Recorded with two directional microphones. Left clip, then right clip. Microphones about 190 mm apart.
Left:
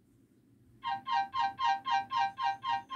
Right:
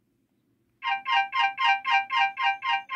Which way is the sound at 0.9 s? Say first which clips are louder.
Right 8 dB; 20° right (ahead or behind).